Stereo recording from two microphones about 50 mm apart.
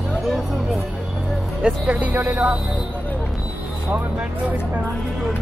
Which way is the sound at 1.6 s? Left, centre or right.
Right.